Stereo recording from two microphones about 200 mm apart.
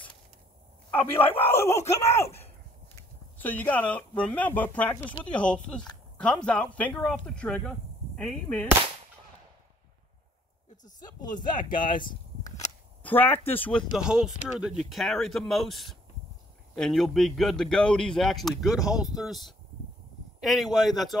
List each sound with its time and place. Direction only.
1.4 s speech: 10° left (ahead or behind)
11.0 s speech: 20° left (ahead or behind)
11.7 s a sound: 25° left (ahead or behind)
13.0 s speech: 10° left (ahead or behind)
13.9 s speech: 5° right (ahead or behind)